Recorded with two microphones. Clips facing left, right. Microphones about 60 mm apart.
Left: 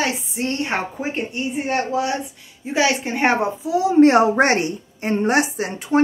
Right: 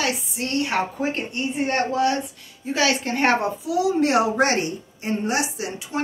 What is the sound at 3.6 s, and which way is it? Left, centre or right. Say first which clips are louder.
A woman's voice: left 10 dB; left.